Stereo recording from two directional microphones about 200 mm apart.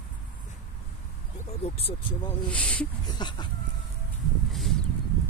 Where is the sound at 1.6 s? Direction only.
30° left (ahead or behind).